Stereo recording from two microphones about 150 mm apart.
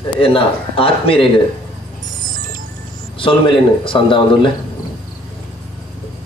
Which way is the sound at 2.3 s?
65° right (ahead or behind).